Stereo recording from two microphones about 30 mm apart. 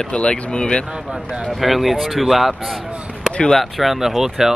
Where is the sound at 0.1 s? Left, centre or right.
Left.